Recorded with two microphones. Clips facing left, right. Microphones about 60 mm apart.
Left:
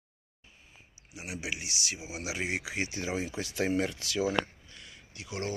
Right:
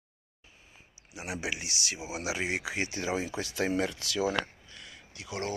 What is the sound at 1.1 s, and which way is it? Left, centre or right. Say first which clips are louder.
Speech: right 2 dB; right.